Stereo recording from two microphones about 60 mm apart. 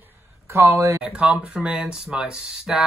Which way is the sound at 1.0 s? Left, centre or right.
Centre.